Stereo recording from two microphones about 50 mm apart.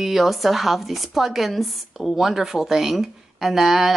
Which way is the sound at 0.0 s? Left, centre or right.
Centre.